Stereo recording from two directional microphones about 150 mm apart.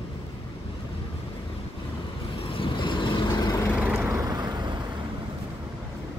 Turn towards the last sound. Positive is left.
turn(degrees=-30)  # may be behind; listen again after turning